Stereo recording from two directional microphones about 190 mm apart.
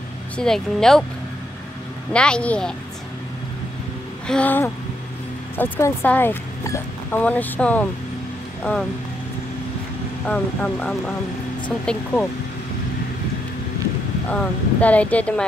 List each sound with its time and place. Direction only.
0.4 s speech: 5° left (ahead or behind)
2.1 s speech: 5° left (ahead or behind)
4.3 s speech: 10° left (ahead or behind)
10.2 s speech: 10° left (ahead or behind)
14.3 s speech: 5° left (ahead or behind)